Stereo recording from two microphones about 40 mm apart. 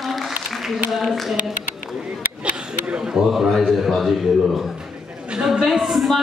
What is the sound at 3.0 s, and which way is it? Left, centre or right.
Speech, centre.